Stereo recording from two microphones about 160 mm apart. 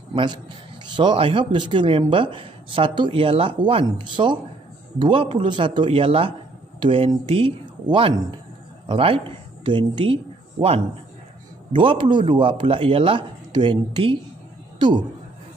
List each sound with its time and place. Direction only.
0.1 s a man's voice: 30° right (ahead or behind)